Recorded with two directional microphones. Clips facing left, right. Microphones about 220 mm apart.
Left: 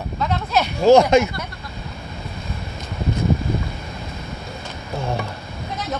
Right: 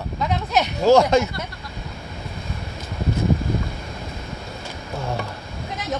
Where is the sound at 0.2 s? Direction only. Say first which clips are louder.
Left 1 dB; 15° right (ahead or behind).